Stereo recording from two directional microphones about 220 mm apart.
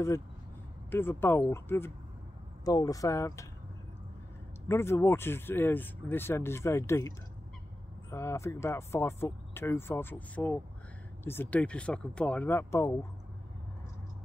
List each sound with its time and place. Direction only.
0.8 s speech: 10° left (ahead or behind)
4.6 s speech: 10° left (ahead or behind)